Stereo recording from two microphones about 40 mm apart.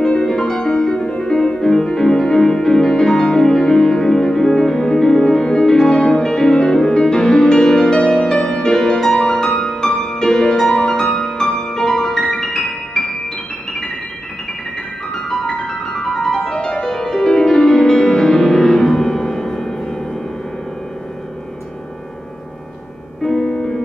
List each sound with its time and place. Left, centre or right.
0.0 s music: centre
15.1 s music: centre
23.2 s music: centre